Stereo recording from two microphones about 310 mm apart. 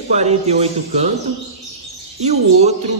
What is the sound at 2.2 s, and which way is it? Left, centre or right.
Speech, right.